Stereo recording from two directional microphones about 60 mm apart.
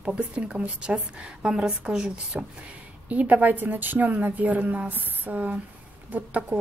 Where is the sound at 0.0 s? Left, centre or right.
Centre.